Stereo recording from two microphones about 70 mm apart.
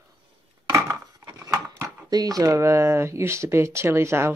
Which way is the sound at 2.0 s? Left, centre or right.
Right.